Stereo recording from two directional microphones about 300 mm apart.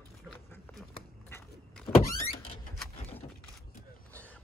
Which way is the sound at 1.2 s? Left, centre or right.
Centre.